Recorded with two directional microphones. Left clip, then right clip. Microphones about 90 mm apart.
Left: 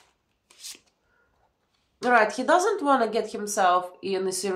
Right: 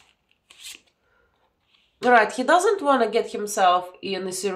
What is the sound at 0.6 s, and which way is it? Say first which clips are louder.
Filing: right 2 dB; 5° left (ahead or behind).